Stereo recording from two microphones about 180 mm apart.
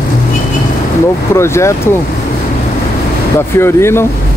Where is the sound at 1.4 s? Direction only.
15° left (ahead or behind).